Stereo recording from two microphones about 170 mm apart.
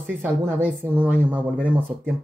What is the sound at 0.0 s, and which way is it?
Speech, 10° right (ahead or behind).